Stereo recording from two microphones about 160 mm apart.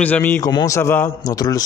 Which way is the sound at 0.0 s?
10° left (ahead or behind).